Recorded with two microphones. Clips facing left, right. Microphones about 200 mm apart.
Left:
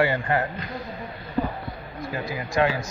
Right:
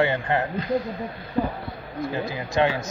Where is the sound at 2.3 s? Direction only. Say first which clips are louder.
Left 1 dB; 25° right (ahead or behind).